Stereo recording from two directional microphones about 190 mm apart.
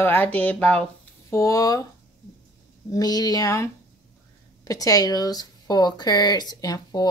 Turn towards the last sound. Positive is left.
turn(degrees=20)  # may be behind; listen again after turning